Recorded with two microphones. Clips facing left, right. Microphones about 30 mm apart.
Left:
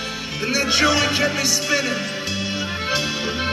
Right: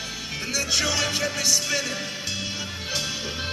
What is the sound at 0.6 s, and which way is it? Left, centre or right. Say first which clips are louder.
Speech: left 7 dB; left.